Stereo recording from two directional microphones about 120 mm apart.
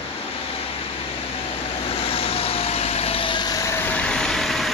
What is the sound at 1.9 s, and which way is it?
Vehicle, 55° left (ahead or behind).